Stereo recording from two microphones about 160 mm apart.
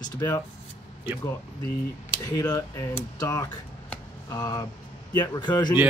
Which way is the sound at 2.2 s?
20° left (ahead or behind).